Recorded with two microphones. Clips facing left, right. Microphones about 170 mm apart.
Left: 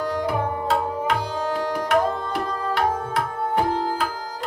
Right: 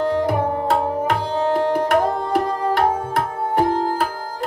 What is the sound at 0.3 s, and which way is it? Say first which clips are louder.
Tabla: right 4 dB; 50° right (ahead or behind).